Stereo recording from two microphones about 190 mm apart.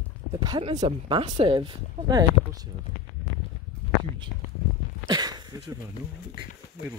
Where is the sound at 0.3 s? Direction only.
25° right (ahead or behind).